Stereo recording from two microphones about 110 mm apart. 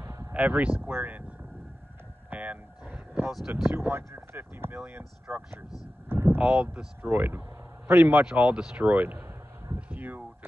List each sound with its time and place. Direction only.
0.0 s a sound: 25° right (ahead or behind)
0.3 s speech: 15° right (ahead or behind)
2.2 s vehicle: 15° right (ahead or behind)
3.3 s speech: 5° right (ahead or behind)
3.7 s speech: 20° right (ahead or behind)
6.0 s vehicle: 20° right (ahead or behind)
6.4 s speech: 10° right (ahead or behind)
9.8 s a sound: 15° right (ahead or behind)